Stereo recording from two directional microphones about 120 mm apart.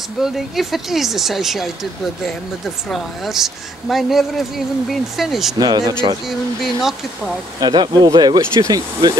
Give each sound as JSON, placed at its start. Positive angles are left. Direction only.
{"t": 0.2, "sound": "speech", "side_deg": 0}
{"t": 2.9, "sound": "speech", "side_deg": -5}
{"t": 5.6, "sound": "speech", "side_deg": -30}
{"t": 6.6, "sound": "speech", "side_deg": 0}
{"t": 7.6, "sound": "speech", "side_deg": -35}